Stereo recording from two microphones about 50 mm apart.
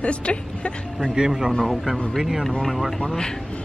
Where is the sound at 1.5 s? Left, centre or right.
Centre.